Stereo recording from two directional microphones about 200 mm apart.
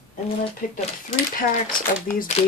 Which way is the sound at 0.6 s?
40° left (ahead or behind).